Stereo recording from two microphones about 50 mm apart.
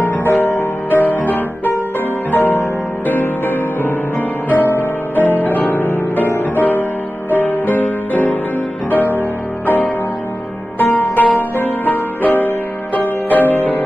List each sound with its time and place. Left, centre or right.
0.0 s music: left
10.8 s music: left